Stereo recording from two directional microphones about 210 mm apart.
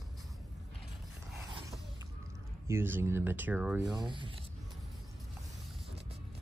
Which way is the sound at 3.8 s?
20° right (ahead or behind).